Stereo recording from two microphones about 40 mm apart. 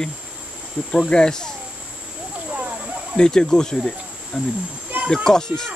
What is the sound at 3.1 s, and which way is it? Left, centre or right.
Speech, centre.